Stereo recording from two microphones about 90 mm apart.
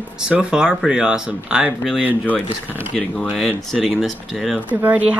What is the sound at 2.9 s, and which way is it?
Speech, 5° left (ahead or behind).